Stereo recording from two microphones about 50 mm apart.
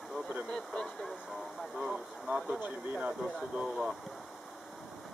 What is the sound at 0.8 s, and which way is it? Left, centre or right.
Vehicle, centre.